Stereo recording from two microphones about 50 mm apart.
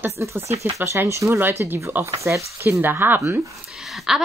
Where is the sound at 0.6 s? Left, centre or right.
Right.